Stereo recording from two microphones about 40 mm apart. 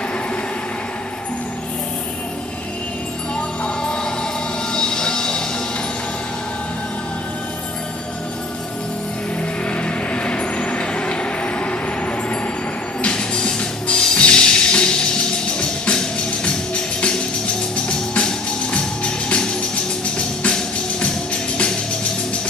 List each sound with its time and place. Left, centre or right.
3.6 s music: centre
4.7 s train: centre
9.7 s vehicle: left
13.0 s music: left